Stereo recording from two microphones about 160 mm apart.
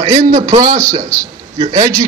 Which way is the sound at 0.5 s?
25° right (ahead or behind).